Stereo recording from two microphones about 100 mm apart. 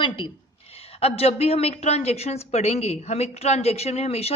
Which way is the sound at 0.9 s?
90° left.